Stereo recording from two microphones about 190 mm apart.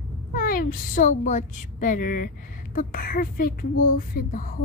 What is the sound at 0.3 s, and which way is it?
A woman's voice, 50° left (ahead or behind).